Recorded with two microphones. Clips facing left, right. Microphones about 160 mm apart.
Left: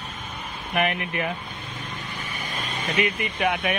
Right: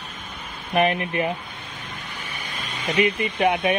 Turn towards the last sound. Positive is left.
turn(degrees=-30)  # may be behind; listen again after turning